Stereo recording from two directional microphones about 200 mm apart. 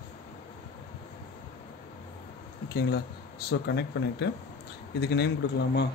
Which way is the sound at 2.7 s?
55° left (ahead or behind).